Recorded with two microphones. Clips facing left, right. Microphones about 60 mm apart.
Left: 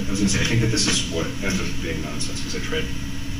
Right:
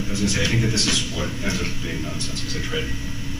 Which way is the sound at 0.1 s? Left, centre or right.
Left.